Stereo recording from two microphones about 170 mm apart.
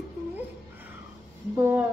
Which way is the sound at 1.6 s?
10° right (ahead or behind).